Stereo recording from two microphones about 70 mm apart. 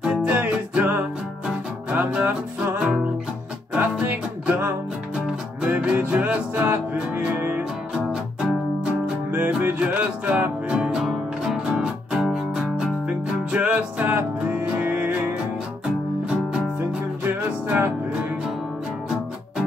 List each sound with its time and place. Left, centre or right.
0.0 s music: centre
0.4 s music: right
1.9 s music: centre
5.1 s music: centre
5.7 s music: centre
7.9 s music: centre
9.6 s music: right
10.9 s music: centre
13.5 s music: centre
17.2 s music: right